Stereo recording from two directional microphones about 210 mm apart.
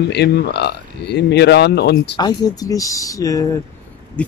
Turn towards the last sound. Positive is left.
turn(degrees=5)  # may be behind; listen again after turning